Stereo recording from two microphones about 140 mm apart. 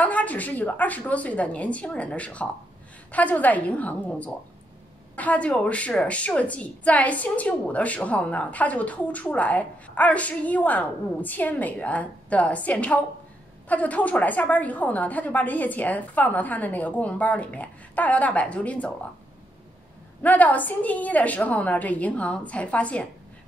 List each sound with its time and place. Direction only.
0.0 s a woman's voice: 10° left (ahead or behind)
20.2 s a woman's voice: 10° left (ahead or behind)